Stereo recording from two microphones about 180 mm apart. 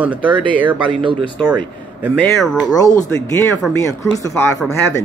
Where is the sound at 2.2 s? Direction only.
5° left (ahead or behind).